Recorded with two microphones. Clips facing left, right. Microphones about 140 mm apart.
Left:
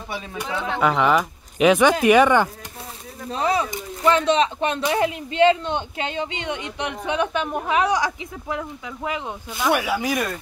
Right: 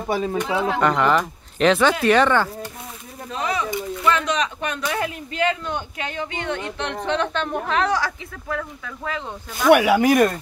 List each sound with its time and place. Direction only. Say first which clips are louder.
0.1 s speech: right 10 dB; 40° right (ahead or behind)
0.5 s speech: right 1 dB; 5° right (ahead or behind)
0.7 s speech: left 2 dB; 5° left (ahead or behind)
3.3 s speech: left 3 dB; 35° left (ahead or behind); by 9.2 s 15° left (ahead or behind)
9.7 s speech: right 8 dB; 65° right (ahead or behind)